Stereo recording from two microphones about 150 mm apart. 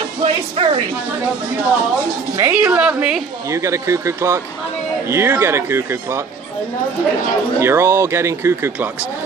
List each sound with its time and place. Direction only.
0.2 s a sound: 35° right (ahead or behind)
2.3 s speech: 10° right (ahead or behind)
3.5 s speech: 20° right (ahead or behind)
7.6 s speech: 15° right (ahead or behind)